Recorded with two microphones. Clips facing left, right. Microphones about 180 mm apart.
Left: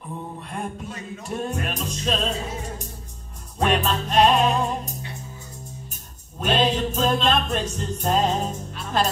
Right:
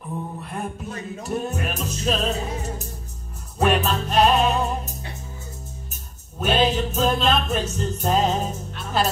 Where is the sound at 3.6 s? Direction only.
5° right (ahead or behind).